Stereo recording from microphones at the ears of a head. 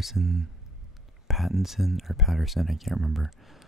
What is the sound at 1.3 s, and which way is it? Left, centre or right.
Speech, centre.